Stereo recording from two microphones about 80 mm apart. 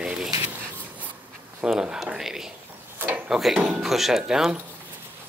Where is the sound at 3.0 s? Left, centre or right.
Right.